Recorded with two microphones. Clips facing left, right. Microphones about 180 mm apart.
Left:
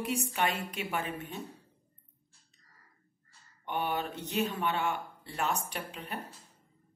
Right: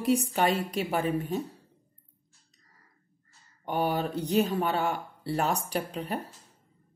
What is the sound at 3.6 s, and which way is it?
A woman's voice, 40° right (ahead or behind).